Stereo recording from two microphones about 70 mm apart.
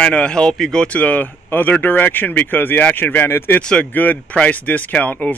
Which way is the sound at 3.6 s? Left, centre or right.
Centre.